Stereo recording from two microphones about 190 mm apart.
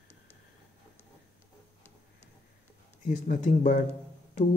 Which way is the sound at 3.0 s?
45° left (ahead or behind).